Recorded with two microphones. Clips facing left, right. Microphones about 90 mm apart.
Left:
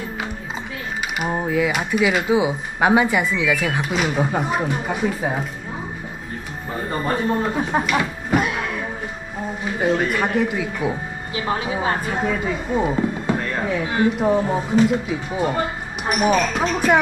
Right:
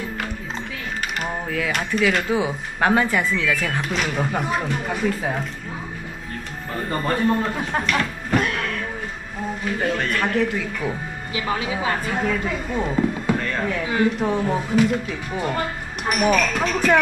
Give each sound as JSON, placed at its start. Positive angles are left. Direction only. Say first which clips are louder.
{"t": 1.3, "sound": "speech", "louder": "left 7 dB", "side_deg": 15}
{"t": 6.7, "sound": "speech", "louder": "left 1 dB", "side_deg": 15}
{"t": 11.3, "sound": "a woman's voice", "louder": "left 1 dB", "side_deg": 30}
{"t": 12.1, "sound": "a woman's voice", "louder": "left 1 dB", "side_deg": 10}